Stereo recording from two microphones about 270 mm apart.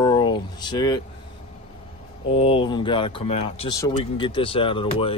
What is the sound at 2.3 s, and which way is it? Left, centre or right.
Speech, left.